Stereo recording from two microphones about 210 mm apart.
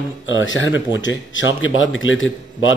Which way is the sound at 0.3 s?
65° left (ahead or behind).